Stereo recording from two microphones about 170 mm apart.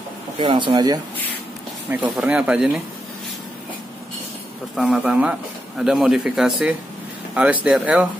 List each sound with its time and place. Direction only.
0.4 s speech: 30° right (ahead or behind)
1.9 s speech: 10° right (ahead or behind)
4.7 s speech: 5° right (ahead or behind)